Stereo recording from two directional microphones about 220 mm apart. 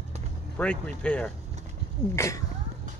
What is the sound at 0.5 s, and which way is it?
Speech, 5° left (ahead or behind).